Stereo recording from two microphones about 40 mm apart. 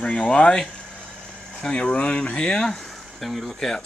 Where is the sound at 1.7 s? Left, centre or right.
Left.